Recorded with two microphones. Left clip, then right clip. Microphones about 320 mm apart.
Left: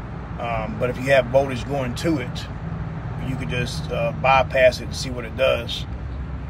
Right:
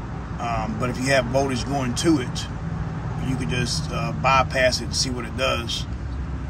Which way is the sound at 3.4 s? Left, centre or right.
Centre.